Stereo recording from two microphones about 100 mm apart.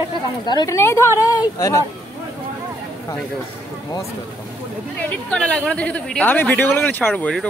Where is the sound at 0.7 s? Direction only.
30° left (ahead or behind).